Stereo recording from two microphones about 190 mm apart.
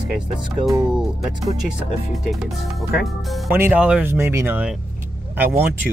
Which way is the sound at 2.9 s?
Centre (ahead or behind).